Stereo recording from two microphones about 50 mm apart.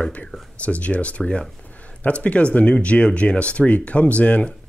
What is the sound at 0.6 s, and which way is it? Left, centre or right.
Speech, left.